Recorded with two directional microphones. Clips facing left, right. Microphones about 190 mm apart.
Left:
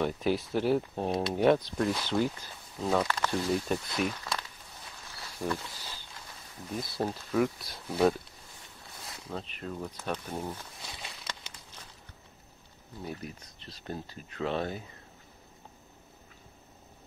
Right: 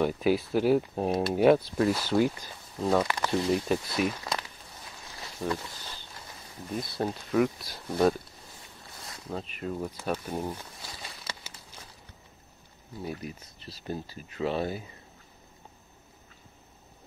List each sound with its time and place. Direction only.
0.0 s speech: 5° right (ahead or behind)
4.2 s a sound: 20° right (ahead or behind)
7.0 s speech: 5° left (ahead or behind)
9.3 s speech: 5° right (ahead or behind)
10.9 s a sound: centre (ahead or behind)
13.0 s speech: 10° right (ahead or behind)